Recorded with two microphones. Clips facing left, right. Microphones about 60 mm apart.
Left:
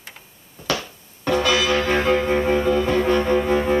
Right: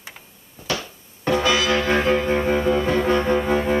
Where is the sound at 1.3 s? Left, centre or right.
Centre.